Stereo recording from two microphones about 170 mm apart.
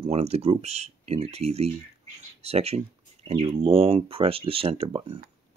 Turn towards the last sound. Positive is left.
turn(degrees=-30)  # may be behind; listen again after turning